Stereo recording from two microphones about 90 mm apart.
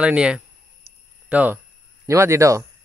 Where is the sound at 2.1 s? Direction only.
30° right (ahead or behind).